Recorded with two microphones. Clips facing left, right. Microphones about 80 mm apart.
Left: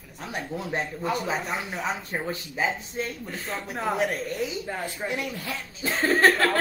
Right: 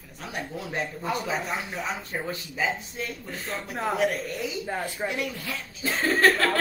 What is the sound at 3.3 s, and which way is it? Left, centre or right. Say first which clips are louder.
Speech: left 1 dB; centre.